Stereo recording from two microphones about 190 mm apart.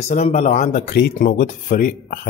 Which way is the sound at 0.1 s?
35° left (ahead or behind).